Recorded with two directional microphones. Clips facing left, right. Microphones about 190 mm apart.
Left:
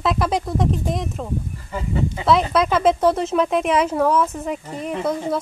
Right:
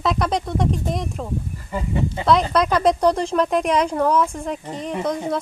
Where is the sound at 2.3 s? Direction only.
5° left (ahead or behind).